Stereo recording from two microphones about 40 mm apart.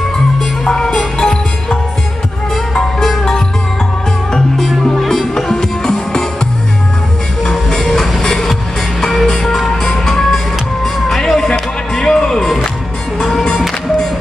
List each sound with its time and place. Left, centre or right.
0.4 s music: centre
2.5 s music: centre
7.4 s music: centre
11.5 s music: centre
12.3 s music: centre